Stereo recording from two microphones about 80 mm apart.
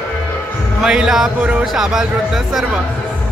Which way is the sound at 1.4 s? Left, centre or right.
Centre.